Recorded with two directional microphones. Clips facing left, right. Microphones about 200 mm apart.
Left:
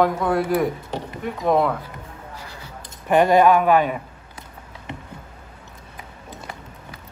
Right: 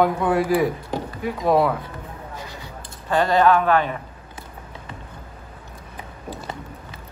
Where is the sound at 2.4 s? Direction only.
20° right (ahead or behind).